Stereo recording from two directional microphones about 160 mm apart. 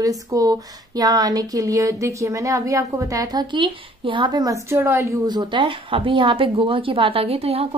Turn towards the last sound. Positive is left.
turn(degrees=-40)  # may be behind; listen again after turning